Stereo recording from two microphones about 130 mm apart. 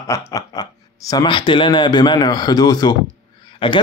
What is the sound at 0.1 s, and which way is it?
Speech, 25° left (ahead or behind).